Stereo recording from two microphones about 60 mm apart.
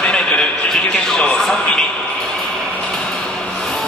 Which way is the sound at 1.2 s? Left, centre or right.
Centre.